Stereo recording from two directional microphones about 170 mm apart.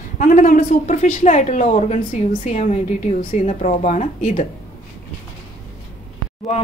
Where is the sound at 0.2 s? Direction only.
50° left (ahead or behind).